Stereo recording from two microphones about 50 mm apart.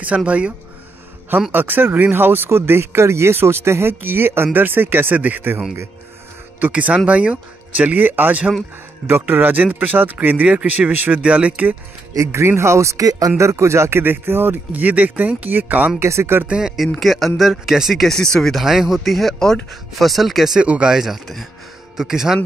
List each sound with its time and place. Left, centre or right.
0.0 s speech: right
1.5 s a man's voice: right
4.5 s speech: right
6.7 s speech: right
12.2 s a man's voice: right
16.0 s speech: right
16.4 s speech: centre
17.0 s speech: centre
17.4 s speech: centre
18.0 s speech: centre
18.5 s speech: centre
20.6 s speech: right
20.9 s speech: centre